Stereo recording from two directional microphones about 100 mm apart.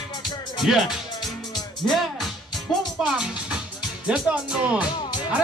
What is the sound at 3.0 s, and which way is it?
A man's voice, 5° right (ahead or behind).